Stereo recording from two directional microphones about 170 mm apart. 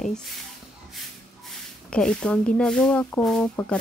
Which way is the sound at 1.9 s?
5° left (ahead or behind).